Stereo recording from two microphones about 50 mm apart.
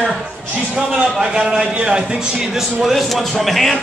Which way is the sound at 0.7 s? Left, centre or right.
Centre.